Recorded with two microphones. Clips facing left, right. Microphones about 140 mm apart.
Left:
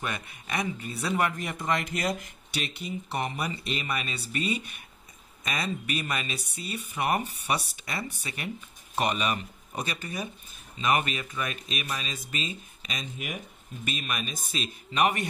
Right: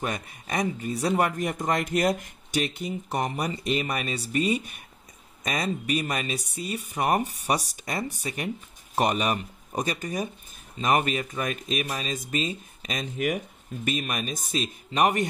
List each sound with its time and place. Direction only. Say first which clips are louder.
0.0 s a man's voice: right 4 dB; 40° right (ahead or behind)